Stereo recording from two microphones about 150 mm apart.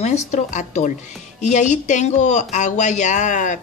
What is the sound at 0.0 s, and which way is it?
Speech, 50° left (ahead or behind).